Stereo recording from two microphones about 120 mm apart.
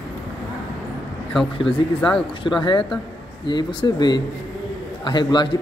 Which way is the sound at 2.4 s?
40° left (ahead or behind).